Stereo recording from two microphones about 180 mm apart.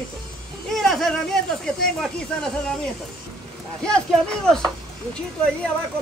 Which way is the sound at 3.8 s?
5° left (ahead or behind).